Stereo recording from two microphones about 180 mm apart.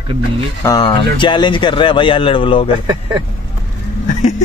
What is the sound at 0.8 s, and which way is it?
Speech, 30° left (ahead or behind).